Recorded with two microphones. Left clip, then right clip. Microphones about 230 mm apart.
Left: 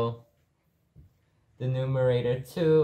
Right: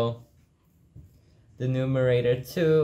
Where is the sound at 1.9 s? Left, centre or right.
Centre.